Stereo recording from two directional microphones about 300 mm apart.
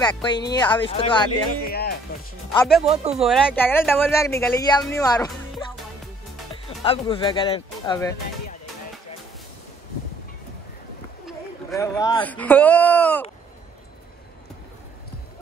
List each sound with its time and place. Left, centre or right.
0.0 s speech: centre
1.7 s speech: left
2.5 s speech: centre
2.9 s speech: right
3.2 s speech: centre
11.7 s speech: centre